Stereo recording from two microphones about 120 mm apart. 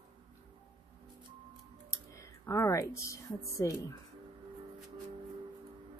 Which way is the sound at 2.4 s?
25° left (ahead or behind).